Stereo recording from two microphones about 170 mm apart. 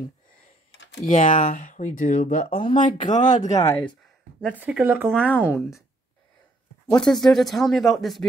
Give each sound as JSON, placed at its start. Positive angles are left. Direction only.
{"t": 1.0, "sound": "speech", "side_deg": 50}
{"t": 2.6, "sound": "speech", "side_deg": 30}
{"t": 3.1, "sound": "speech", "side_deg": 45}
{"t": 3.6, "sound": "speech", "side_deg": 10}
{"t": 4.6, "sound": "speech", "side_deg": -5}
{"t": 5.1, "sound": "speech", "side_deg": 10}
{"t": 5.4, "sound": "speech", "side_deg": -5}
{"t": 7.0, "sound": "speech", "side_deg": 0}